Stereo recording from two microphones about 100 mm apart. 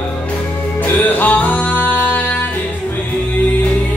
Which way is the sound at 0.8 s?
15° left (ahead or behind).